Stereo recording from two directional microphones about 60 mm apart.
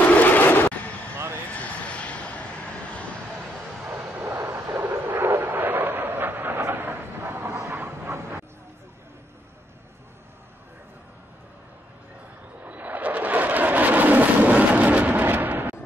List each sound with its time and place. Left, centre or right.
0.1 s a sound: left
1.5 s vehicle: left
4.2 s vehicle: right
4.7 s a sound: right
8.1 s vehicle: right
12.6 s vehicle: right
15.2 s artillery fire: right